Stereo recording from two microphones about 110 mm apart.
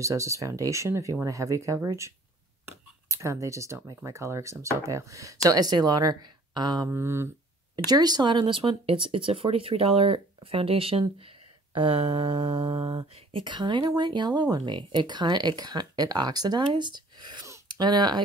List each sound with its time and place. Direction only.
0.0 s speech: 30° right (ahead or behind)
6.9 s speech: 25° right (ahead or behind)
7.7 s speech: 40° right (ahead or behind)